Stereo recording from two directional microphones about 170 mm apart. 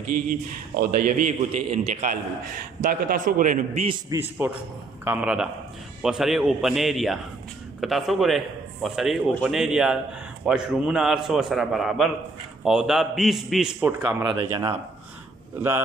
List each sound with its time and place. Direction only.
0.3 s a man's voice: 50° right (ahead or behind)
4.1 s a man's voice: 15° right (ahead or behind)
14.0 s speech: 25° right (ahead or behind)